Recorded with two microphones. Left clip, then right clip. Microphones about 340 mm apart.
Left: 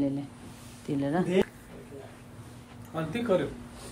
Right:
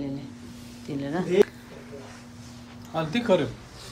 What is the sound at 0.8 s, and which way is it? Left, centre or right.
Speech, centre.